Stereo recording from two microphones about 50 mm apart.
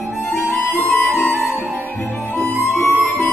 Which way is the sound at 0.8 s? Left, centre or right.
Left.